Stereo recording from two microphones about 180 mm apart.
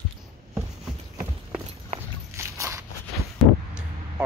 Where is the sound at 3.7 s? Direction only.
5° right (ahead or behind).